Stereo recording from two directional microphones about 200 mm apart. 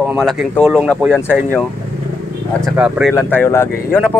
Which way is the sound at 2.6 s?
Centre (ahead or behind).